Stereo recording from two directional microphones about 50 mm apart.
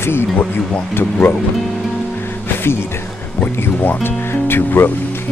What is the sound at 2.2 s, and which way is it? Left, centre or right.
Music, left.